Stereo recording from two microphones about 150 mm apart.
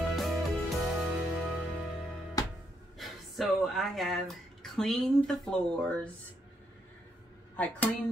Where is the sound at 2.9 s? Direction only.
Centre (ahead or behind).